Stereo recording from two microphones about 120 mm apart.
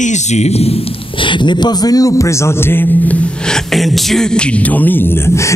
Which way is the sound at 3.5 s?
Centre (ahead or behind).